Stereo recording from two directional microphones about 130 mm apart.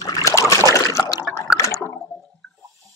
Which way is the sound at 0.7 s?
25° left (ahead or behind).